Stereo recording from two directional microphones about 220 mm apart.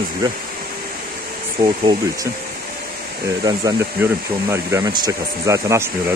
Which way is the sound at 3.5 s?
15° right (ahead or behind).